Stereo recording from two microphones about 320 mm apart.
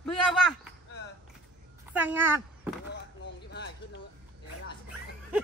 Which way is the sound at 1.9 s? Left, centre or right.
Centre.